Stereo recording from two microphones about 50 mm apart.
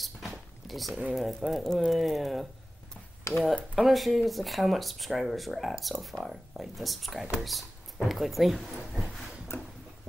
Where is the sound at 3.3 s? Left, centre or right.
Left.